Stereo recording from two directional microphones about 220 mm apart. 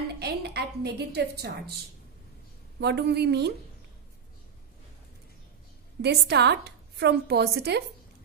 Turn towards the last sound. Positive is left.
turn(degrees=-50)  # may be behind; listen again after turning